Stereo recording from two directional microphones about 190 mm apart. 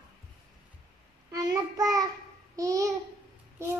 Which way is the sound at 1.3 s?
20° right (ahead or behind).